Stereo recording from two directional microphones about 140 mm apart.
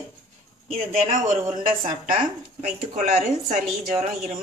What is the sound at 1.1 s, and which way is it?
A woman's voice, 65° right (ahead or behind).